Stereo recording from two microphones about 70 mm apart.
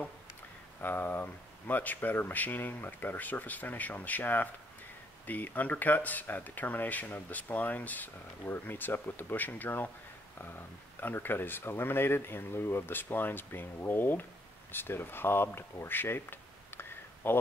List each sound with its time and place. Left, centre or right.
0.7 s speech: left
11.0 s speech: left